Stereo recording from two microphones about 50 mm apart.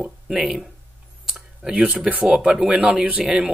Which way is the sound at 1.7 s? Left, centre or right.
Right.